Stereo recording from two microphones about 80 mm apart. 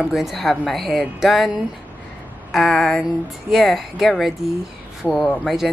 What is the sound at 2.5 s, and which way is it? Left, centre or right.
Speech, centre.